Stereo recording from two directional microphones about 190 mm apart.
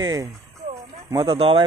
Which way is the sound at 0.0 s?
20° right (ahead or behind).